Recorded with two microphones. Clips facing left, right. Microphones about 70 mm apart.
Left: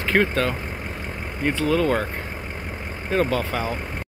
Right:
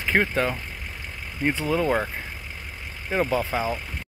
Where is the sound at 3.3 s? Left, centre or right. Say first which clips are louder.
Even; centre.